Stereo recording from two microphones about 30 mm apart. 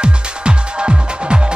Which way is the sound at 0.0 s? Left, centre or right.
Right.